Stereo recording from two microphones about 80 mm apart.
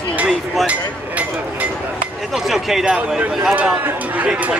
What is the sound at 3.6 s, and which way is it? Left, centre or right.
Speech, centre.